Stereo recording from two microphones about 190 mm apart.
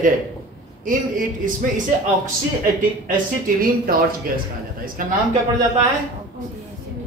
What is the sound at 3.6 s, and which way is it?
Speech, 50° right (ahead or behind).